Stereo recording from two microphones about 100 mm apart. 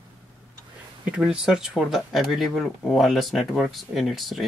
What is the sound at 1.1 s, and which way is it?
Speech, 10° right (ahead or behind).